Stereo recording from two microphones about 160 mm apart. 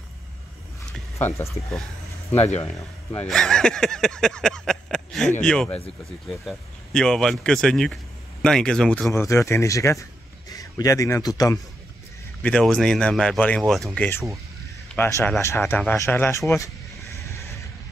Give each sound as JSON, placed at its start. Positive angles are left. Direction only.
{"t": 1.1, "sound": "speech", "side_deg": 20}
{"t": 1.5, "sound": "speech", "side_deg": 0}
{"t": 2.3, "sound": "speech", "side_deg": 40}
{"t": 3.2, "sound": "speech", "side_deg": 5}
{"t": 9.1, "sound": "a man's voice", "side_deg": 20}
{"t": 12.4, "sound": "speech", "side_deg": 5}
{"t": 15.0, "sound": "speech", "side_deg": 15}
{"t": 17.1, "sound": "vehicle", "side_deg": 20}